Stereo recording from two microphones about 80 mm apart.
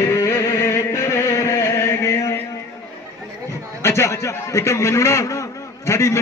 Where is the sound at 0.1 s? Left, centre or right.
Left.